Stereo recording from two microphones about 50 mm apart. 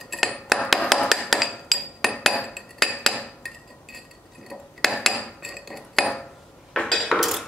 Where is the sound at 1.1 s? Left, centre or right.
Centre.